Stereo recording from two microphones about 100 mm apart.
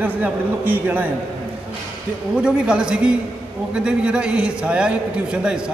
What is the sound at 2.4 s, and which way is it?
A man's voice, 10° right (ahead or behind).